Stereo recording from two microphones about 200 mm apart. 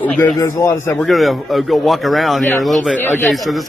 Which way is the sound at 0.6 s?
15° left (ahead or behind).